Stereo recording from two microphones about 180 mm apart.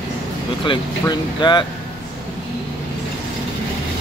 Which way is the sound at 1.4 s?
25° left (ahead or behind).